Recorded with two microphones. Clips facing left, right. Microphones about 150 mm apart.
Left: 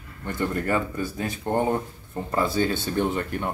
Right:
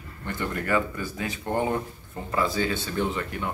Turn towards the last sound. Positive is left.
turn(degrees=45)  # may be behind; listen again after turning